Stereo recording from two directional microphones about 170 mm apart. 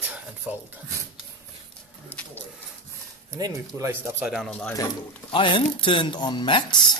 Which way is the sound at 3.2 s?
20° right (ahead or behind).